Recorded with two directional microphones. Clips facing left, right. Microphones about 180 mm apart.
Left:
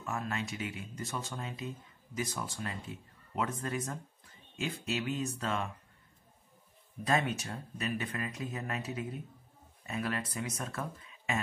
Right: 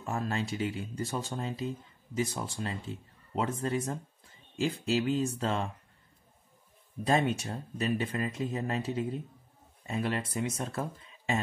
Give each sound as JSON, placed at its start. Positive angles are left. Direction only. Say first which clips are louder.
{"t": 0.0, "sound": "speech", "louder": "right 4 dB", "side_deg": -30}
{"t": 7.1, "sound": "speech", "louder": "right 4 dB", "side_deg": -30}